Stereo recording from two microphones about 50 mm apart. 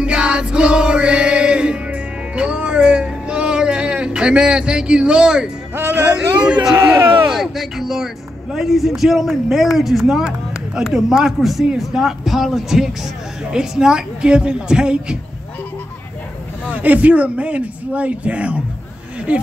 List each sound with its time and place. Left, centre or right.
0.0 s music: centre
5.9 s a sound: right
6.1 s a man's voice: right
7.3 s a woman's voice: centre
16.6 s a man's voice: right